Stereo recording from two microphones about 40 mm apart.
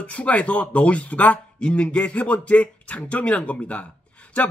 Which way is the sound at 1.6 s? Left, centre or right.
Left.